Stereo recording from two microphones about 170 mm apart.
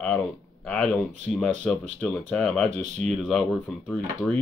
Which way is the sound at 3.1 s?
5° left (ahead or behind).